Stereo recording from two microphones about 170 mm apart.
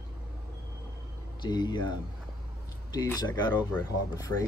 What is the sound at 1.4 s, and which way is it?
Speech, 25° left (ahead or behind).